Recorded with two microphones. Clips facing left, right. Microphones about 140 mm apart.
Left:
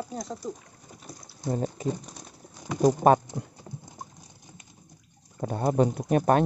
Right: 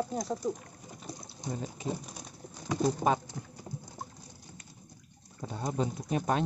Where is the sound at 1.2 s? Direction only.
25° right (ahead or behind).